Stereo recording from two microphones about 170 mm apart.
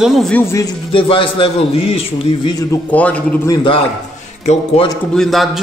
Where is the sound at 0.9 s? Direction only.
30° left (ahead or behind); by 3.3 s 5° left (ahead or behind).